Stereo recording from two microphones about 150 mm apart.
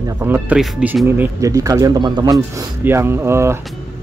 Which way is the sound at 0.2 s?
15° right (ahead or behind).